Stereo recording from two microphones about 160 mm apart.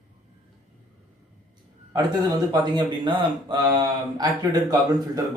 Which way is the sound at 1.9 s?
25° right (ahead or behind).